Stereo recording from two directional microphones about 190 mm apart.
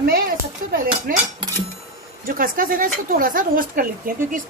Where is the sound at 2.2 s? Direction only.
45° right (ahead or behind).